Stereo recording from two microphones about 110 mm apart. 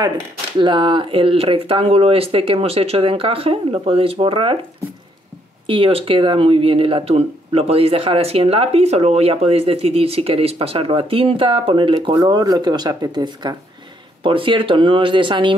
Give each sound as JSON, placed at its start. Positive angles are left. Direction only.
{"t": 0.6, "sound": "speech", "side_deg": -45}
{"t": 5.7, "sound": "speech", "side_deg": -60}
{"t": 12.2, "sound": "speech", "side_deg": -35}
{"t": 14.2, "sound": "speech", "side_deg": -50}